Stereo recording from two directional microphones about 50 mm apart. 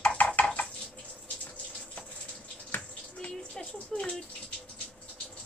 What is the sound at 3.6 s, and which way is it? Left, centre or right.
Speech, centre.